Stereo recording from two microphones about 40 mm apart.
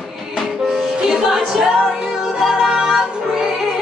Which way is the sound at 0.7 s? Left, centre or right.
Centre.